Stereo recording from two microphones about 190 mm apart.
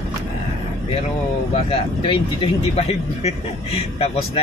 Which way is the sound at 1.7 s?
30° left (ahead or behind).